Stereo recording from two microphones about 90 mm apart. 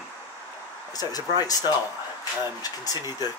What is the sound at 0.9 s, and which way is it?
Speech, 45° left (ahead or behind).